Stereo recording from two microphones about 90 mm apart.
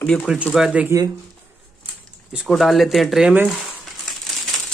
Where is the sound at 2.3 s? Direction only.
Centre (ahead or behind).